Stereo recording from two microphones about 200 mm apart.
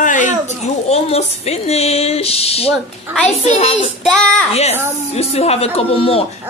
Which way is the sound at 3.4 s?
35° left (ahead or behind).